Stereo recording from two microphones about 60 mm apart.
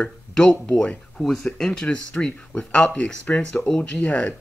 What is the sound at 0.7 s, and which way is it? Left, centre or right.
Speech, centre.